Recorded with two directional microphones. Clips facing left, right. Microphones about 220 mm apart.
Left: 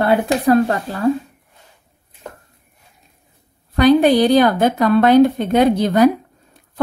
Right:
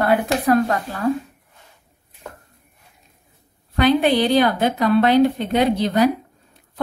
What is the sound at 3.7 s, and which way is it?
A woman's voice, 40° left (ahead or behind).